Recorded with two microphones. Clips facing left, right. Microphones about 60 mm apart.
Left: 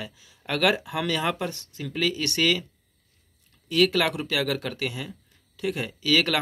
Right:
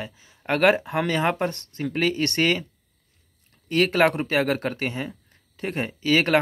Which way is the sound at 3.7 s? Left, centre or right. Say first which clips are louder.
Right 2 dB; right.